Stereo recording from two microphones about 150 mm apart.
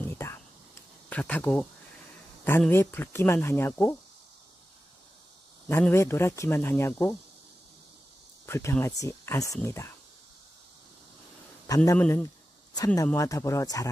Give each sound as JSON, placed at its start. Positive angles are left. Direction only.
{"t": 0.1, "sound": "a sound", "side_deg": 15}
{"t": 1.1, "sound": "speech", "side_deg": 10}
{"t": 2.7, "sound": "speech", "side_deg": 15}
{"t": 5.7, "sound": "speech", "side_deg": 15}
{"t": 8.5, "sound": "speech", "side_deg": 15}
{"t": 11.6, "sound": "speech", "side_deg": 20}
{"t": 12.7, "sound": "speech", "side_deg": 25}